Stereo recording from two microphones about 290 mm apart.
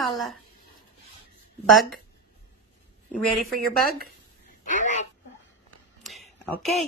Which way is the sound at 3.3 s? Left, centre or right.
Centre.